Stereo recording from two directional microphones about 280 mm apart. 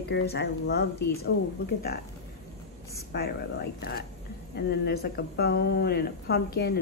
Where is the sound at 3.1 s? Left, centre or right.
Left.